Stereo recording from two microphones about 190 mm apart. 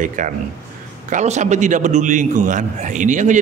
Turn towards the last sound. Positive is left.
turn(degrees=-40)  # may be behind; listen again after turning